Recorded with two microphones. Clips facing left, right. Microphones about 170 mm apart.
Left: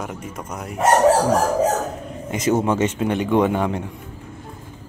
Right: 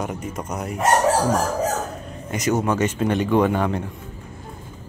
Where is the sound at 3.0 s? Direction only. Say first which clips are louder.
Even; 15° left (ahead or behind).